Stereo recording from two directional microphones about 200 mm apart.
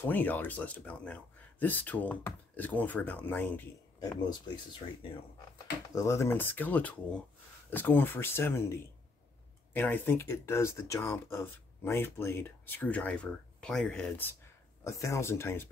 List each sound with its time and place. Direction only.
0.0 s speech: 10° left (ahead or behind)
4.0 s speech: 20° left (ahead or behind)
5.9 s speech: 15° left (ahead or behind)
9.8 s speech: 10° left (ahead or behind)